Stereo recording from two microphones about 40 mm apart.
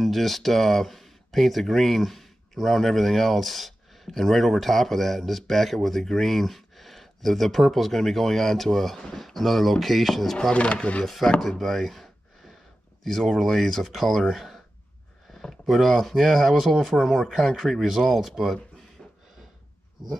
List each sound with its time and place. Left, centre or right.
0.0 s speech: centre
10.5 s speech: left
11.4 s a sound: centre
13.0 s speech: centre